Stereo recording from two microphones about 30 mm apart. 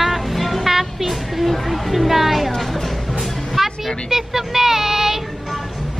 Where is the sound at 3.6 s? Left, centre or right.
Centre.